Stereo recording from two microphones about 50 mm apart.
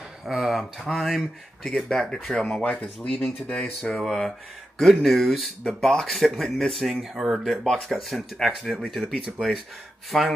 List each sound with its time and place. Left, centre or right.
0.2 s speech: centre
1.9 s speech: centre
2.7 s speech: left
4.0 s speech: centre
7.2 s speech: centre
7.4 s speech: centre
10.1 s speech: centre